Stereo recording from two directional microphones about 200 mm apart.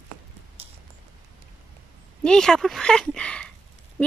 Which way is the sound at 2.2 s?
5° left (ahead or behind).